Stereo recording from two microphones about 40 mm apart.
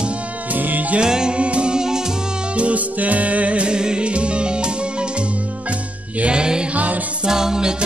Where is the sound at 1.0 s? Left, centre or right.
Centre.